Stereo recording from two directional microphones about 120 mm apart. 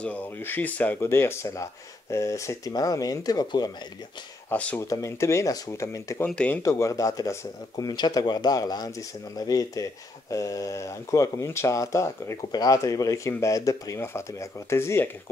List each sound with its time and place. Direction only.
0.0 s speech: 15° left (ahead or behind); by 3.7 s 30° left (ahead or behind)
4.5 s speech: 15° left (ahead or behind)
4.8 s speech: 25° left (ahead or behind)
6.2 s speech: 10° left (ahead or behind)
6.6 s speech: 25° left (ahead or behind)